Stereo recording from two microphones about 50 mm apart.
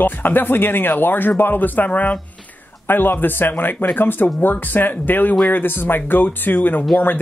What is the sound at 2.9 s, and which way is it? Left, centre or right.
Speech, left.